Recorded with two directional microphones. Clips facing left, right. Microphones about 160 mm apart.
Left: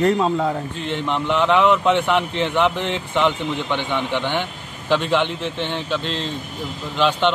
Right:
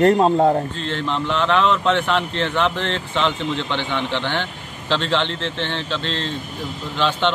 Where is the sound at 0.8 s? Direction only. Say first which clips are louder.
Even; 15° left (ahead or behind).